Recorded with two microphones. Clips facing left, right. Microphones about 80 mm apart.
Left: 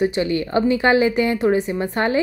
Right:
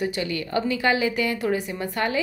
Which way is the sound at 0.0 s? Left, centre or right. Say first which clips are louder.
Left 7 dB; left.